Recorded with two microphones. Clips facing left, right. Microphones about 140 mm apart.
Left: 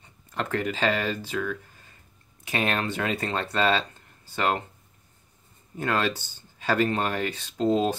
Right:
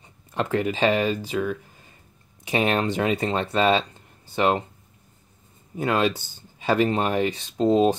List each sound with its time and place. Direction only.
0.3 s speech: 20° right (ahead or behind)
5.8 s speech: 15° right (ahead or behind)